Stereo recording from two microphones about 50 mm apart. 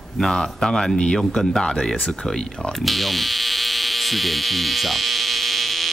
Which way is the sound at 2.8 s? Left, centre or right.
Centre.